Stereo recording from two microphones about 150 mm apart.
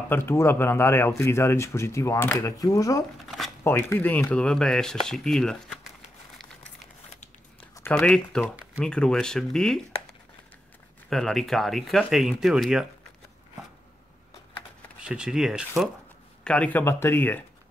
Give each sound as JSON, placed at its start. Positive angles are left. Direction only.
{"t": 0.1, "sound": "speech", "side_deg": 15}
{"t": 3.3, "sound": "a sound", "side_deg": 0}
{"t": 3.6, "sound": "speech", "side_deg": 15}
{"t": 7.9, "sound": "speech", "side_deg": 5}
{"t": 11.1, "sound": "speech", "side_deg": 0}
{"t": 15.0, "sound": "speech", "side_deg": -5}
{"t": 16.4, "sound": "speech", "side_deg": 10}